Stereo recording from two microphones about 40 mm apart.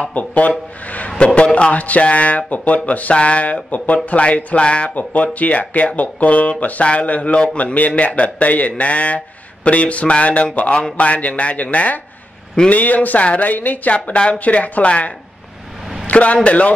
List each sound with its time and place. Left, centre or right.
0.1 s a man's voice: left
3.7 s a man's voice: left
4.9 s a man's voice: left
13.9 s a man's voice: left